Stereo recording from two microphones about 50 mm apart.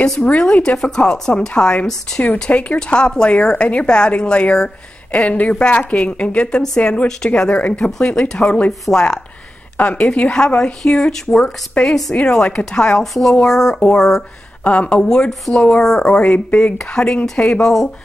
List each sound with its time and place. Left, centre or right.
0.2 s a woman's voice: left
14.6 s a woman's voice: left
16.4 s a woman's voice: left
16.7 s a woman's voice: centre